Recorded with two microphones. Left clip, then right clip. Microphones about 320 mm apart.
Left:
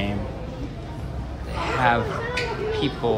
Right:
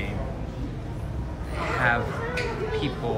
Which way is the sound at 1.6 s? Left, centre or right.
Centre.